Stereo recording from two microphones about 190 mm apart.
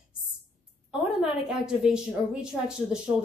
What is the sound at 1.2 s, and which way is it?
A woman's voice, 5° right (ahead or behind).